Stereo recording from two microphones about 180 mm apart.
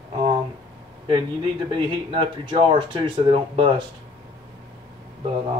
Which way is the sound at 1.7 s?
30° right (ahead or behind).